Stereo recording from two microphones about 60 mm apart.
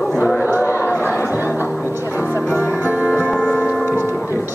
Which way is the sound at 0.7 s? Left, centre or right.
Left.